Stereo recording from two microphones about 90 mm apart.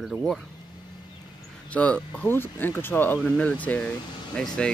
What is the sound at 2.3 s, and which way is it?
Speech, 25° left (ahead or behind).